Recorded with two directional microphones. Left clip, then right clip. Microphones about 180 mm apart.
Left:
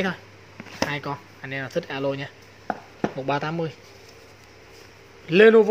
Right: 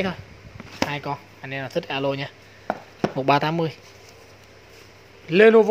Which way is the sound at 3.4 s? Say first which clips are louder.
Right 4 dB; 15° right (ahead or behind).